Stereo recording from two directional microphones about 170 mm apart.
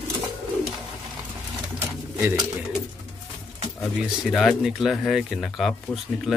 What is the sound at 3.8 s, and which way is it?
Speech, centre (ahead or behind).